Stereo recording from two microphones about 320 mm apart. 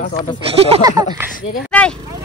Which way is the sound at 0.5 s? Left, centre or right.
Centre.